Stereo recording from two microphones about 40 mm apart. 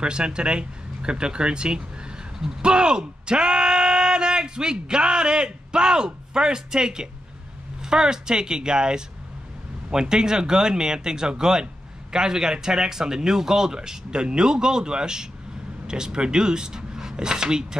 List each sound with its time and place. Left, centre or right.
0.0 s speech: right